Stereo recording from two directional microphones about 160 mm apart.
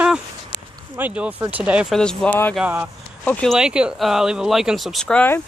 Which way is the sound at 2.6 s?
10° right (ahead or behind).